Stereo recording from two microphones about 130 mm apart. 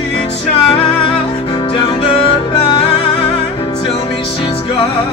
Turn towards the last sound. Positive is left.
turn(degrees=45)  # may be behind; listen again after turning